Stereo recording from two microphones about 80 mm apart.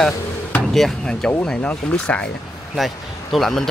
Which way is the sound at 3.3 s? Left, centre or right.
Centre.